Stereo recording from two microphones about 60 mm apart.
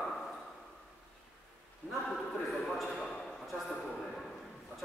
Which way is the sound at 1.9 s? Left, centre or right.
Centre.